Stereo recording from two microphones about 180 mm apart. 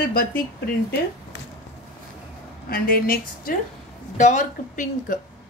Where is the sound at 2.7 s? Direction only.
55° left (ahead or behind).